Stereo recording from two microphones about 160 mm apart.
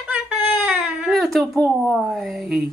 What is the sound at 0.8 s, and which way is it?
Baby cry, centre (ahead or behind).